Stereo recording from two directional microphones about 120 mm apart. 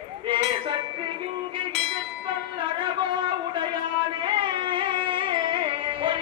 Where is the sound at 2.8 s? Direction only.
45° right (ahead or behind).